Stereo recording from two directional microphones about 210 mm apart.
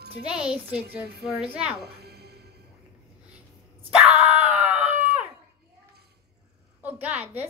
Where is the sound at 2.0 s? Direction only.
50° right (ahead or behind).